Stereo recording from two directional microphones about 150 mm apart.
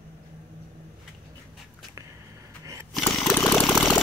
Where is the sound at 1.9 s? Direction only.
20° right (ahead or behind).